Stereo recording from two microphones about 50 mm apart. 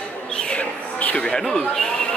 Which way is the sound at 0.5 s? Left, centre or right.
Left.